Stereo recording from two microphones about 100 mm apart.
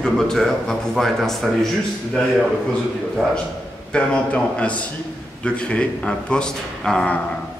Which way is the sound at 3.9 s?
10° left (ahead or behind).